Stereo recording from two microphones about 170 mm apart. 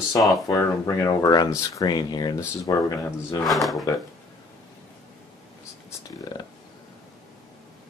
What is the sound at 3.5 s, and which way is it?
Speech, centre (ahead or behind).